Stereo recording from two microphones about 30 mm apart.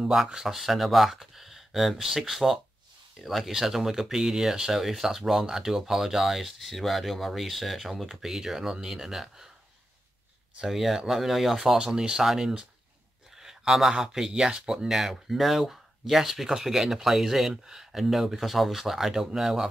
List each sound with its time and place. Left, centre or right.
0.6 s speech: centre
8.2 s speech: centre
10.7 s speech: centre; by 14.9 s right
14.9 s speech: centre